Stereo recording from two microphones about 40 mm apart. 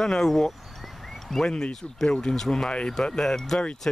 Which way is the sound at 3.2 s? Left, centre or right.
Centre.